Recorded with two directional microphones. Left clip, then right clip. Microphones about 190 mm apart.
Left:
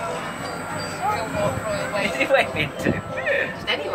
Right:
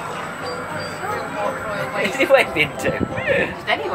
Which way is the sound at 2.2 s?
40° right (ahead or behind).